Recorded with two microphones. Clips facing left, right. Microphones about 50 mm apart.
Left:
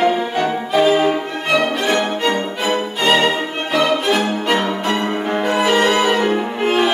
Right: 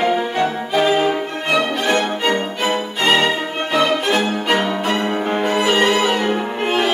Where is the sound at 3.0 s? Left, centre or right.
Centre.